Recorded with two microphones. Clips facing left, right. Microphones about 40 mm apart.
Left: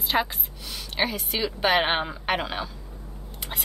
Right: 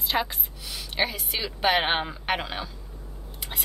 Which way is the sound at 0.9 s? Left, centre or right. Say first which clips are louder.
Left 1 dB; centre.